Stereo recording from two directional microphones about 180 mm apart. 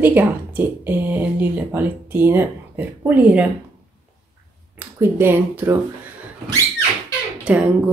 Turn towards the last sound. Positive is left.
turn(degrees=-5)  # may be behind; listen again after turning